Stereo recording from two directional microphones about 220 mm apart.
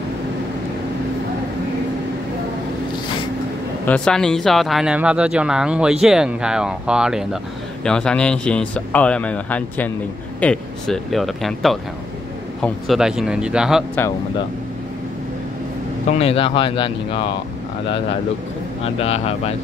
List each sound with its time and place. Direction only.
3.8 s speech: 5° left (ahead or behind)
16.1 s speech: 25° left (ahead or behind)
18.8 s speech: 25° left (ahead or behind)